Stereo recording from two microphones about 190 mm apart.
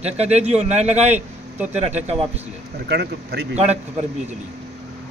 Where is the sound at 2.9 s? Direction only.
60° right (ahead or behind).